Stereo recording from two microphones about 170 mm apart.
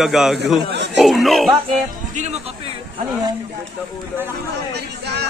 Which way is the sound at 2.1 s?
45° right (ahead or behind).